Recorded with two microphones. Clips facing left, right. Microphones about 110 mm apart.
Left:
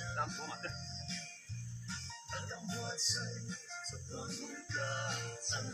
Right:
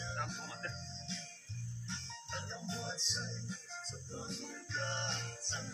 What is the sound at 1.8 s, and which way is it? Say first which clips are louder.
Music: left 1 dB; 5° left (ahead or behind).